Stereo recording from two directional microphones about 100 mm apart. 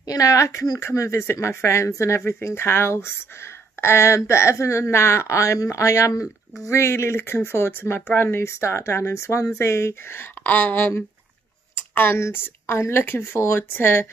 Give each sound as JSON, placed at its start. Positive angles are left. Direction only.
{"t": 0.0, "sound": "speech", "side_deg": 35}